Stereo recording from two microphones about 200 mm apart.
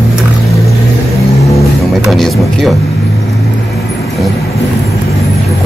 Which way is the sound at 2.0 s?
Centre (ahead or behind).